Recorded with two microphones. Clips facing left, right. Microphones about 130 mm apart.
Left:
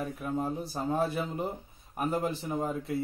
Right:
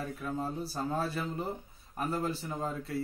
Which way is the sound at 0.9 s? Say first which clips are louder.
Left 5 dB; 20° left (ahead or behind).